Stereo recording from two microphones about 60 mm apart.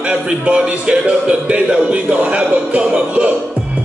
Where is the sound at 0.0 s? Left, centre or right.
Centre.